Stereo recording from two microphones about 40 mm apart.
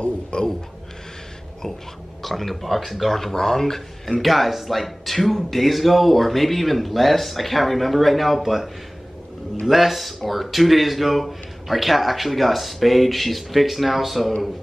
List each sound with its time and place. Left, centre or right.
0.0 s speech: left
2.2 s speech: centre
9.7 s speech: centre